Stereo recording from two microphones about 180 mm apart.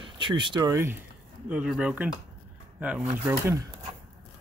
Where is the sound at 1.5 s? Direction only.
5° right (ahead or behind).